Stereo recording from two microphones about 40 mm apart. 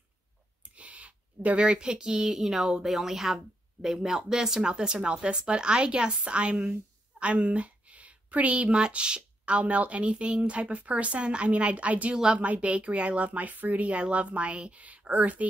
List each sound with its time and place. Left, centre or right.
0.7 s a woman's voice: right